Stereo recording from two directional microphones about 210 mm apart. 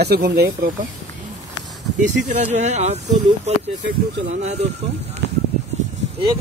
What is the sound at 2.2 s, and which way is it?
Speech, 35° right (ahead or behind).